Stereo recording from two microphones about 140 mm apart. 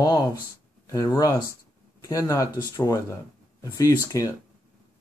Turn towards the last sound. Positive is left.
turn(degrees=25)  # may be behind; listen again after turning